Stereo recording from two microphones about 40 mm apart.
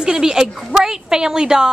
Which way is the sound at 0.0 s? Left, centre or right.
Centre.